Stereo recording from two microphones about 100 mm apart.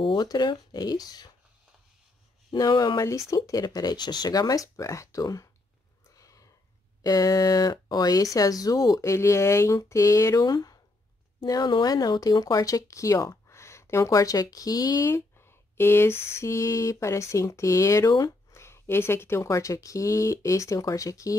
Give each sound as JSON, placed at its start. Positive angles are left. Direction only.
{"t": 0.0, "sound": "speech", "side_deg": 45}
{"t": 2.5, "sound": "speech", "side_deg": 40}
{"t": 3.0, "sound": "speech", "side_deg": 30}
{"t": 6.1, "sound": "a sound", "side_deg": 35}
{"t": 7.0, "sound": "speech", "side_deg": 40}
{"t": 15.0, "sound": "speech", "side_deg": 25}